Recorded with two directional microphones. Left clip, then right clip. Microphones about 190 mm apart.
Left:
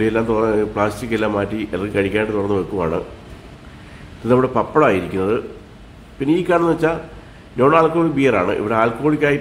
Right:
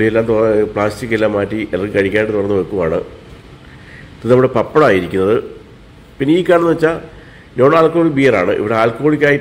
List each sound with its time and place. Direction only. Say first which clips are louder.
0.0 s speech: right 5 dB; 5° right (ahead or behind)
4.3 s speech: right 5 dB; 15° right (ahead or behind)